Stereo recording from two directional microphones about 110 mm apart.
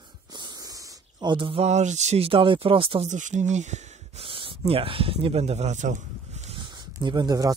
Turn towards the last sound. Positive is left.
turn(degrees=-35)  # may be behind; listen again after turning